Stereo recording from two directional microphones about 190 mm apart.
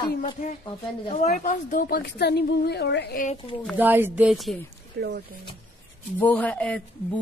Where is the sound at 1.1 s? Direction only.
45° left (ahead or behind); by 3.2 s 60° left (ahead or behind).